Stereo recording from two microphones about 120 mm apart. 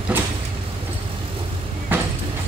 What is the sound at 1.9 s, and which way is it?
Vehicle, 15° right (ahead or behind).